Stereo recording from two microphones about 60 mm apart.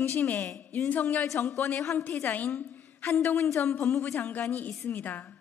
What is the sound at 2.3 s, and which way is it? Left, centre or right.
A woman's voice, left.